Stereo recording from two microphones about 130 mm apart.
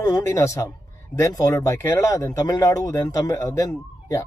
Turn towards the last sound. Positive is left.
turn(degrees=25)  # may be behind; listen again after turning